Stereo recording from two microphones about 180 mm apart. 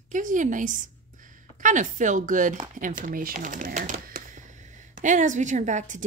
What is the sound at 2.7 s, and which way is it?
Speech, 50° right (ahead or behind).